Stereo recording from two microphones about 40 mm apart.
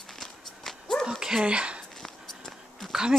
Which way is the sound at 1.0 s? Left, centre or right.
Centre.